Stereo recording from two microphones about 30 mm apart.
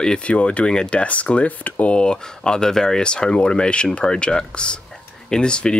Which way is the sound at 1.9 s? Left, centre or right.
Left.